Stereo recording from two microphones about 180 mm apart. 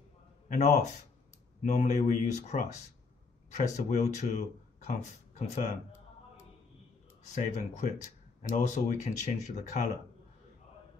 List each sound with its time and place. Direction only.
0.5 s speech: 40° left (ahead or behind)
7.3 s speech: 45° left (ahead or behind)